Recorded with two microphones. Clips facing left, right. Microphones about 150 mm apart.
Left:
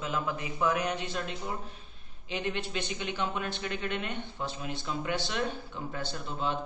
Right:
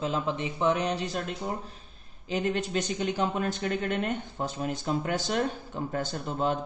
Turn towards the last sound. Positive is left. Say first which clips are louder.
# right 5 dB
turn(degrees=-45)  # may be behind; listen again after turning